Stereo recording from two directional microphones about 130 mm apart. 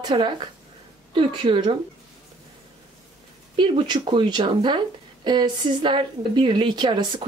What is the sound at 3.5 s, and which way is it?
Speech, 35° right (ahead or behind).